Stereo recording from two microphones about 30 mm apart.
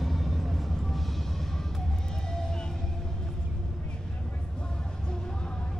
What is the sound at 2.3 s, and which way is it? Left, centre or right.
Music, left.